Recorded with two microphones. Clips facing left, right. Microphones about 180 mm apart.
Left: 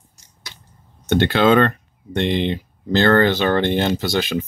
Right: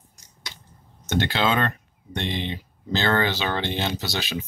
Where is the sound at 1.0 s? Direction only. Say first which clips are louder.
Left 7 dB; 55° left (ahead or behind).